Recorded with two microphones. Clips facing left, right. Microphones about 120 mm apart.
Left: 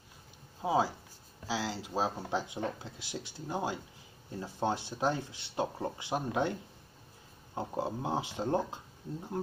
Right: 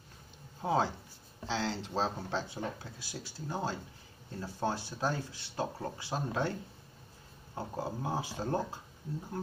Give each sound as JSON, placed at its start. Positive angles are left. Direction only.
{"t": 0.6, "sound": "speech", "side_deg": 5}
{"t": 7.5, "sound": "speech", "side_deg": 20}